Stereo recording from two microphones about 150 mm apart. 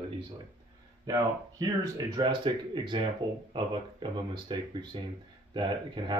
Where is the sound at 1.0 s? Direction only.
25° right (ahead or behind).